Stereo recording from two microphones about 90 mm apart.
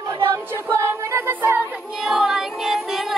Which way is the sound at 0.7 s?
30° right (ahead or behind).